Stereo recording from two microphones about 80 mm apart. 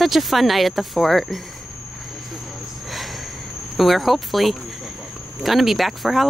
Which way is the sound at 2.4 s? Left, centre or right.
Centre.